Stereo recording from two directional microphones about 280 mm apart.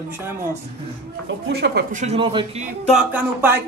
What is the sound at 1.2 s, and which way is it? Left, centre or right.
Speech, right.